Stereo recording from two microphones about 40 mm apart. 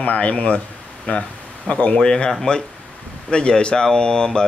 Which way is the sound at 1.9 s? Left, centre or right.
Centre.